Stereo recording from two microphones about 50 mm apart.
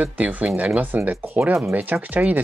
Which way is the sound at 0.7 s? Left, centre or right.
Right.